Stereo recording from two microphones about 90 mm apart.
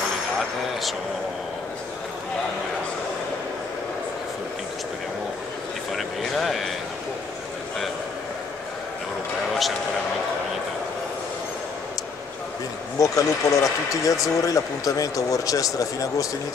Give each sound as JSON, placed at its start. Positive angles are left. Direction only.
{"t": 5.9, "sound": "a sound", "side_deg": 0}
{"t": 9.5, "sound": "vehicle", "side_deg": 0}
{"t": 13.0, "sound": "speech", "side_deg": 40}